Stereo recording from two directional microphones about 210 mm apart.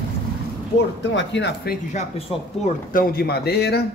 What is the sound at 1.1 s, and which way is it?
Speech, 60° left (ahead or behind).